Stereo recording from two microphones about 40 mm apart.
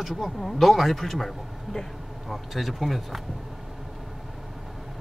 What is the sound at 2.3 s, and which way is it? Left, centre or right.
Speech, centre.